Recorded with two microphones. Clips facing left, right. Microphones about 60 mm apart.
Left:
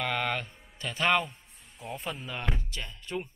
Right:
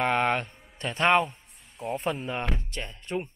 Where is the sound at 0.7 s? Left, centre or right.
Right.